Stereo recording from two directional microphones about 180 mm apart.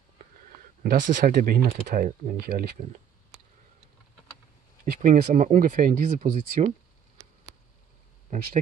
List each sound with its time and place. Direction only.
0.9 s speech: 45° right (ahead or behind)
5.0 s speech: 45° right (ahead or behind)